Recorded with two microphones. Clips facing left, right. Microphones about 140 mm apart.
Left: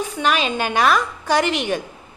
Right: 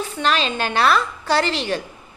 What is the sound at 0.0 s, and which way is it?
A woman's voice, 10° left (ahead or behind).